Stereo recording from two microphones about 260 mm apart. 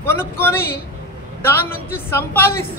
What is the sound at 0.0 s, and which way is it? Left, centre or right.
A woman's voice, centre.